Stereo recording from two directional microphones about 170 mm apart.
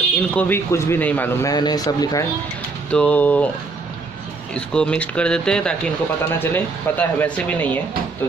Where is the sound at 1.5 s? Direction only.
25° left (ahead or behind).